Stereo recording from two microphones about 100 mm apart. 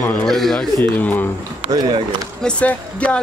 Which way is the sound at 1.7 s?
40° right (ahead or behind).